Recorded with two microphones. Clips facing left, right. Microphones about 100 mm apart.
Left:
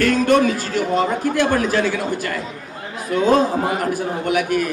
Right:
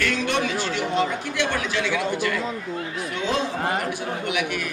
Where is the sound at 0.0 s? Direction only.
45° left (ahead or behind).